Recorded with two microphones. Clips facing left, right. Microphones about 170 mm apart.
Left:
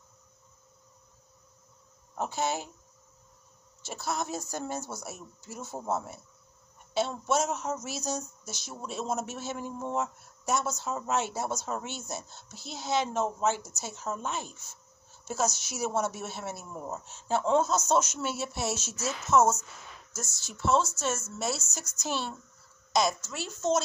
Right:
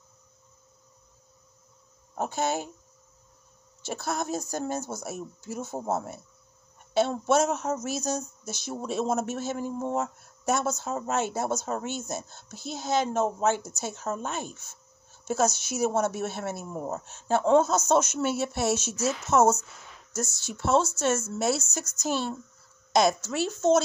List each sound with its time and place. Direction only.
2.1 s speech: 50° right (ahead or behind)
3.8 s a woman's voice: 55° right (ahead or behind)
22.9 s a woman's voice: 65° right (ahead or behind)